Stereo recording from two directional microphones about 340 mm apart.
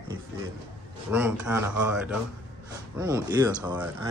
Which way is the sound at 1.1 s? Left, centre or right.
Centre.